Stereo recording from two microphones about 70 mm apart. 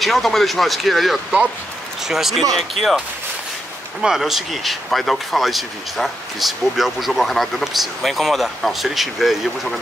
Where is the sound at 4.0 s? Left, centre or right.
Centre.